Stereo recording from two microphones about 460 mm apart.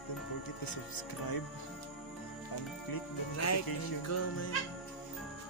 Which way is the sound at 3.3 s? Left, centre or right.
Left.